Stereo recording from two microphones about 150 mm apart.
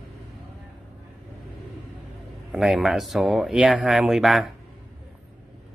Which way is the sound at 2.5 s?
Centre (ahead or behind).